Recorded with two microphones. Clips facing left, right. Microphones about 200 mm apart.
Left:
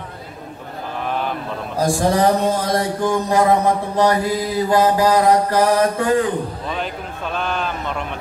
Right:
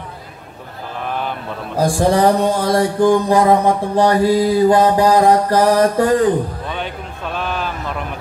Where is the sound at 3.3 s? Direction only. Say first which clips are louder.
Right 3 dB; 30° right (ahead or behind).